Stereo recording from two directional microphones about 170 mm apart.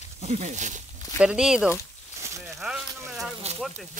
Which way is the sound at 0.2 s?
40° right (ahead or behind).